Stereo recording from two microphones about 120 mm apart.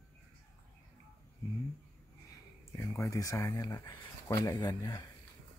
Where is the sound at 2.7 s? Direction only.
25° left (ahead or behind).